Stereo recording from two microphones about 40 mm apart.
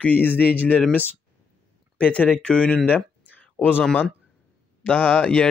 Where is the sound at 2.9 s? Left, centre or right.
Left.